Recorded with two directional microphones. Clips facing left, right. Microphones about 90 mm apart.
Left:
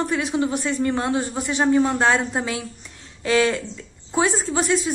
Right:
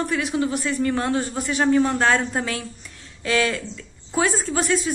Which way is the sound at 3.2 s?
30° left (ahead or behind).